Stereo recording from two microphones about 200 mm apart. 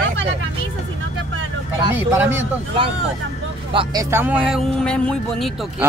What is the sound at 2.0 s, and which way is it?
Speech, 10° right (ahead or behind).